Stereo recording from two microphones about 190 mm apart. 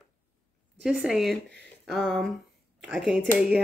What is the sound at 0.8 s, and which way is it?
Speech, 5° right (ahead or behind).